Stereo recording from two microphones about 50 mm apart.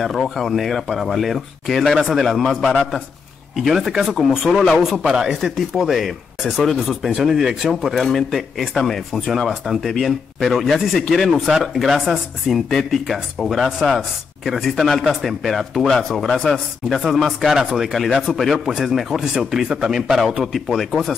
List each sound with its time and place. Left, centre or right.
0.0 s speech: centre
5.0 s a man's voice: centre
7.9 s speech: centre
16.3 s speech: centre
16.5 s speech: centre
17.6 s a man's voice: centre
17.9 s a man's voice: centre
20.6 s speech: centre